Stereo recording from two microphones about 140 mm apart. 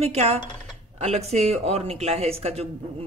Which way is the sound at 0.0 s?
50° right (ahead or behind).